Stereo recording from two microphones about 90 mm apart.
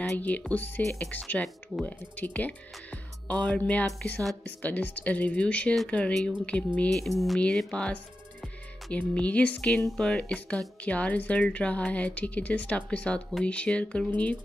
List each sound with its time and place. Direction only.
0.0 s speech: 15° left (ahead or behind)